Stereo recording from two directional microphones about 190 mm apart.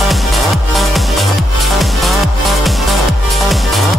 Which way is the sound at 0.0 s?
Centre (ahead or behind).